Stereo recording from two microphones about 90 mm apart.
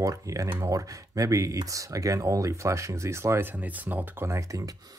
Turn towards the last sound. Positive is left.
turn(degrees=-40)  # may be behind; listen again after turning